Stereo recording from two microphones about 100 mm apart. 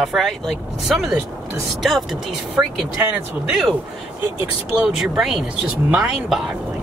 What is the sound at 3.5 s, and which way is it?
Speech, 5° right (ahead or behind).